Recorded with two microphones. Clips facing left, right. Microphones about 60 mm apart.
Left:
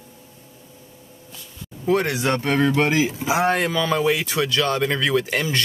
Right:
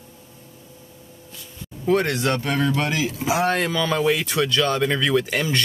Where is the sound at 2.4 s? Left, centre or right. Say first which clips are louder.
Left 3 dB; left.